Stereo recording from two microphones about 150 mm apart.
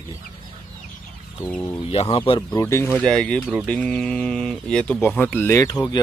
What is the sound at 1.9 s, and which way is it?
Speech, 35° left (ahead or behind).